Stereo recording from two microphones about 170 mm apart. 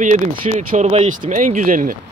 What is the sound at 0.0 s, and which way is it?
Speech, 50° right (ahead or behind).